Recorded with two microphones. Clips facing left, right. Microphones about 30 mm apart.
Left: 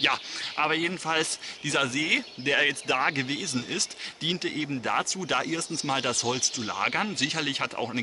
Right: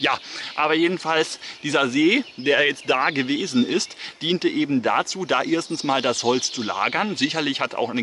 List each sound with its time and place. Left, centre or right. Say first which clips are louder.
0.0 s speech: right 3 dB; centre